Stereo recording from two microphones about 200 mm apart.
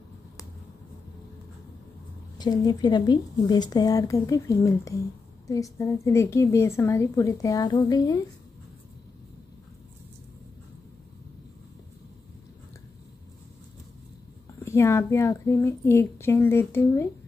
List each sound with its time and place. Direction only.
2.3 s a woman's voice: 20° left (ahead or behind)
14.6 s a woman's voice: 15° left (ahead or behind)